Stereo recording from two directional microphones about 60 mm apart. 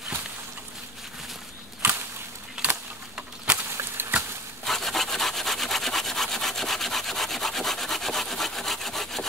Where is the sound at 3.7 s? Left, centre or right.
Right.